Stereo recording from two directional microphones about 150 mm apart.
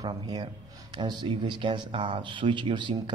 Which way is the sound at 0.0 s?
30° right (ahead or behind).